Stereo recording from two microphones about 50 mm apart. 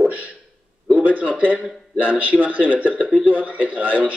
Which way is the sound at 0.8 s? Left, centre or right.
Right.